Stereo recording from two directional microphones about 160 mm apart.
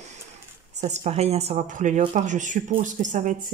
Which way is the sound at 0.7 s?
45° right (ahead or behind).